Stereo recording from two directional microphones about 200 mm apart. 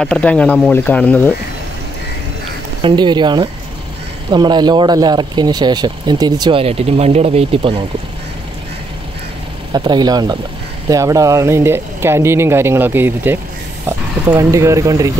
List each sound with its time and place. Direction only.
0.0 s speech: 5° left (ahead or behind)
2.8 s speech: 20° right (ahead or behind)
9.7 s speech: 20° right (ahead or behind)